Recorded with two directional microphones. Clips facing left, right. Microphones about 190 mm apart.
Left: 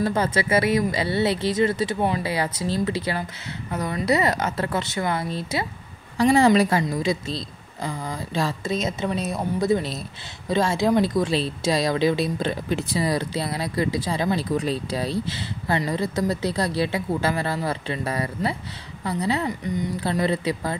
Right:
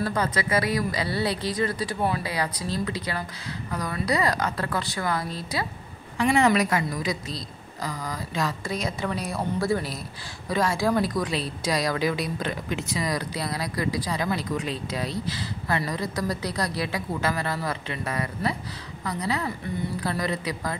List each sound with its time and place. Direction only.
0.0 s a woman's voice: 25° left (ahead or behind)
6.1 s a woman's voice: 35° left (ahead or behind)